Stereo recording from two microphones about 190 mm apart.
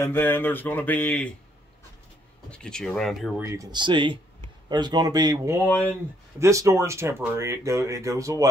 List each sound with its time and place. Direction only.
0.0 s speech: 10° left (ahead or behind)
2.5 s speech: 5° left (ahead or behind)
3.4 s speech: 20° right (ahead or behind)